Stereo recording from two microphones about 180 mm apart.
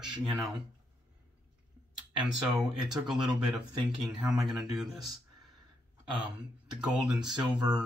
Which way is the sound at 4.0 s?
5° right (ahead or behind).